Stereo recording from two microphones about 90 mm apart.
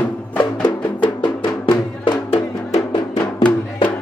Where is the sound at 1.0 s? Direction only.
65° left (ahead or behind).